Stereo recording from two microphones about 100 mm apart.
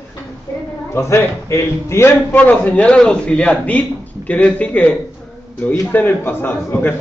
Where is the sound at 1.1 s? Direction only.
25° left (ahead or behind).